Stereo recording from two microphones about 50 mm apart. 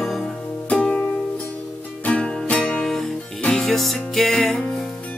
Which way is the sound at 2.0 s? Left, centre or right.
Centre.